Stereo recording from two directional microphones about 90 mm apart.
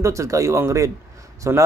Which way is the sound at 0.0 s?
35° right (ahead or behind).